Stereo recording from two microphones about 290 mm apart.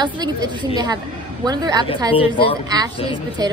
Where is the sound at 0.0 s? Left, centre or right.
Centre.